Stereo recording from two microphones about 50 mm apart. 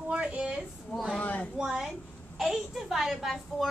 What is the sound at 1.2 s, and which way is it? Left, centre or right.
Speech, left.